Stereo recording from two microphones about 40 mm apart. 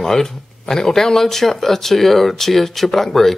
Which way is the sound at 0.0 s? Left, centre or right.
Centre.